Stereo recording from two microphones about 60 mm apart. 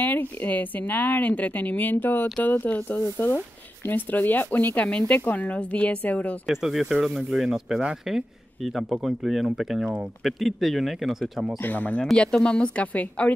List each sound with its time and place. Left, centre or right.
0.0 s speech: left
6.4 s speech: centre
11.6 s speech: left
12.0 s speech: centre